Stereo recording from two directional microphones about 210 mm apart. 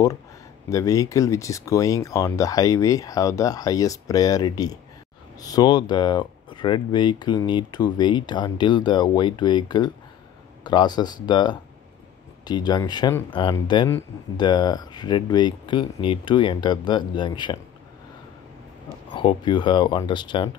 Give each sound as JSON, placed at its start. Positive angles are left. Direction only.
{"t": 0.7, "sound": "speech", "side_deg": 15}
{"t": 19.1, "sound": "speech", "side_deg": 20}